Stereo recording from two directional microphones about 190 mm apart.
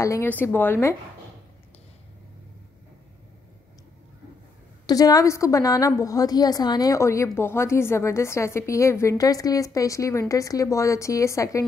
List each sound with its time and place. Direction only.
0.0 s a woman's voice: 15° left (ahead or behind)
4.8 s a woman's voice: 20° left (ahead or behind)